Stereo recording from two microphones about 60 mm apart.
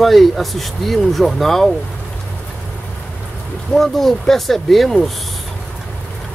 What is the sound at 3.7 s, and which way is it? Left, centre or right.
Speech, centre.